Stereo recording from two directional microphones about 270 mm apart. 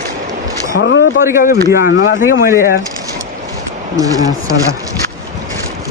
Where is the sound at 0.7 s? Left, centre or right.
Left.